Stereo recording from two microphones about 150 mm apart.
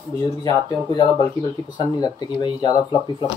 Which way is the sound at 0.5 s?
25° left (ahead or behind).